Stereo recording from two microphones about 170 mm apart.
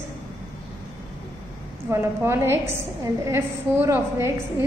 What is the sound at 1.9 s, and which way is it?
A woman's voice, 15° right (ahead or behind).